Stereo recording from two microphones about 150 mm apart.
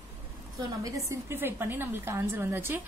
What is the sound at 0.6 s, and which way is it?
A woman's voice, 25° right (ahead or behind).